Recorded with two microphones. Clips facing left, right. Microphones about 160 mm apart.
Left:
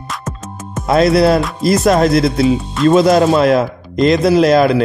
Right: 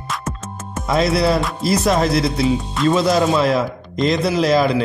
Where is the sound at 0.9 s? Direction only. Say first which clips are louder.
Left 6 dB; 60° left (ahead or behind).